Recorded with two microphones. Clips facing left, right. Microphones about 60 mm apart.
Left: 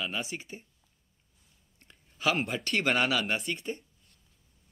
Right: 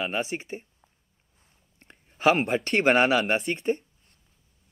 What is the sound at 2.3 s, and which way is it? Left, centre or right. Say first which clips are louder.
A man's voice: right 6 dB; right.